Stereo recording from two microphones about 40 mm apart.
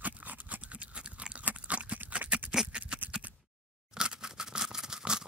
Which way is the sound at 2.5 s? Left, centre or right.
Right.